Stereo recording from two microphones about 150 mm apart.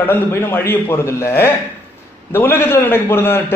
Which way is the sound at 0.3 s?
15° left (ahead or behind).